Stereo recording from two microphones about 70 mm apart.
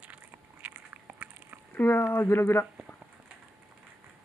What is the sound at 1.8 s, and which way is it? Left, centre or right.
Speech, left.